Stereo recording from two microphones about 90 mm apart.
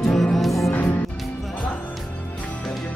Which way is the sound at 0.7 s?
15° left (ahead or behind).